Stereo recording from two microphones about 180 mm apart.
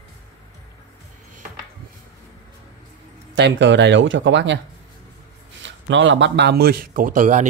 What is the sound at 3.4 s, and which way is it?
Speech, 80° right.